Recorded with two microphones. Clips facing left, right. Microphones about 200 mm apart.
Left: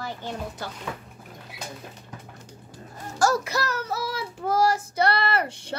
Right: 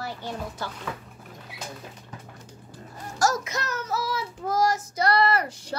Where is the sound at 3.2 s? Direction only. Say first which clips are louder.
Left 2 dB; 30° left (ahead or behind).